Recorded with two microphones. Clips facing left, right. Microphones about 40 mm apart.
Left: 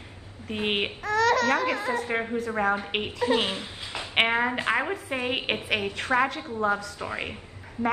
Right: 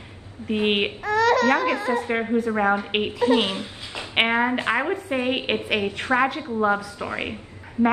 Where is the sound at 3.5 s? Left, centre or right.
Right.